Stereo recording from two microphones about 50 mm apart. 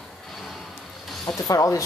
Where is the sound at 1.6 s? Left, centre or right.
Left.